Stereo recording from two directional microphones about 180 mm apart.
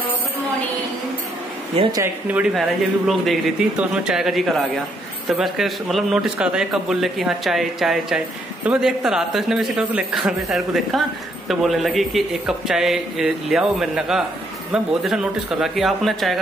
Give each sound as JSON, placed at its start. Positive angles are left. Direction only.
{"t": 1.8, "sound": "speech", "side_deg": -20}
{"t": 2.2, "sound": "a man's voice", "side_deg": -5}